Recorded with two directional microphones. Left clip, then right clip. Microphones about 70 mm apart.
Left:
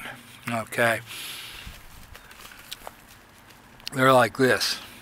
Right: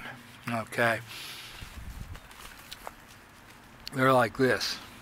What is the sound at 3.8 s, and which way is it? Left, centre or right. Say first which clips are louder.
Speech: left 5 dB; left.